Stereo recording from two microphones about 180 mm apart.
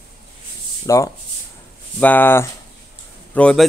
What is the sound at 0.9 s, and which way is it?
A man's voice, 20° left (ahead or behind).